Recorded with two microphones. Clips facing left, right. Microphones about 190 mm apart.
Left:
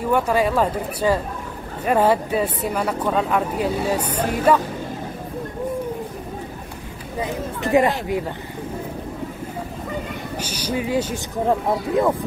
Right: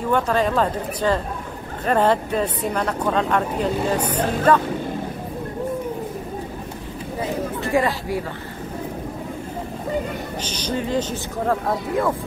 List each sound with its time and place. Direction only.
0.0 s speech: 10° left (ahead or behind)
7.2 s a sound: 20° left (ahead or behind)
10.4 s speech: 10° left (ahead or behind)